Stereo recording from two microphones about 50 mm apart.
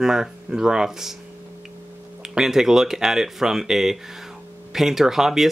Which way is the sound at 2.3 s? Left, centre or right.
Centre.